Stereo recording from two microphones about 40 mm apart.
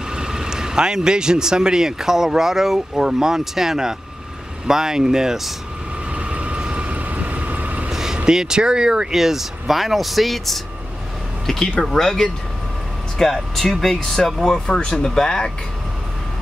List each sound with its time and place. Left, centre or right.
0.1 s speech: centre
6.1 s vehicle: right
7.0 s vehicle: right
7.9 s vehicle: centre
8.3 s speech: centre
14.7 s speech: left